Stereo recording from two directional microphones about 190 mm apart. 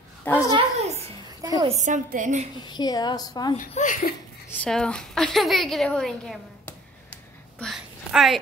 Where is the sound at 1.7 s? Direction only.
40° right (ahead or behind).